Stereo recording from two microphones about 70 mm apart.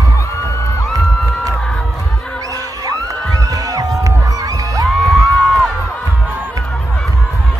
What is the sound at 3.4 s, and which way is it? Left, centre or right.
Music, right.